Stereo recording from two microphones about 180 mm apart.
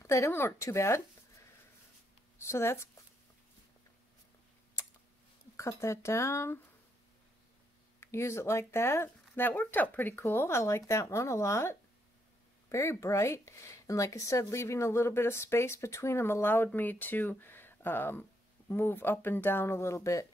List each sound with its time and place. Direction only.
0.0 s speech: 15° left (ahead or behind)
2.4 s speech: 15° left (ahead or behind)
5.6 s speech: 15° left (ahead or behind)
8.0 s speech: 15° left (ahead or behind)